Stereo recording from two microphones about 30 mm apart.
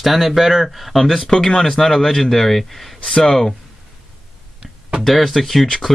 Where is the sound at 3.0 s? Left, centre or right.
Centre.